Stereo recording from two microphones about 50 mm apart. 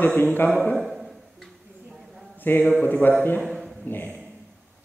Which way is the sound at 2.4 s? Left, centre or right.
Left.